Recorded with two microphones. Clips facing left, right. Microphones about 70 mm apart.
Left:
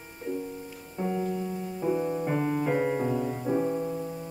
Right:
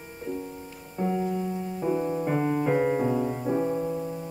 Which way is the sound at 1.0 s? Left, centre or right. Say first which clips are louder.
Right 2 dB; centre.